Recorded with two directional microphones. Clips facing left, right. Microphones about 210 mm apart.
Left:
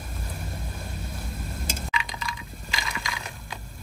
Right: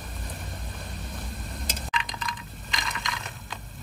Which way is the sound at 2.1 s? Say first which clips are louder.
Even; centre (ahead or behind).